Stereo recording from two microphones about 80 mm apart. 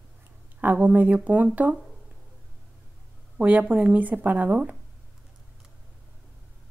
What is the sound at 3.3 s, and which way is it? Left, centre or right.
Speech, centre.